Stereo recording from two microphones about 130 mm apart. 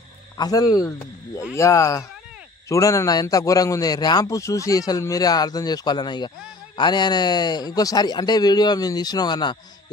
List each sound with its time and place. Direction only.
0.4 s a man's voice: 30° left (ahead or behind)